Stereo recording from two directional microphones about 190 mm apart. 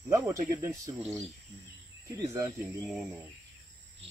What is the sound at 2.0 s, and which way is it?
Speech, 15° right (ahead or behind).